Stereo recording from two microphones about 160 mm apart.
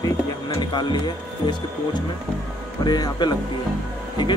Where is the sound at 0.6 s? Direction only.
30° left (ahead or behind).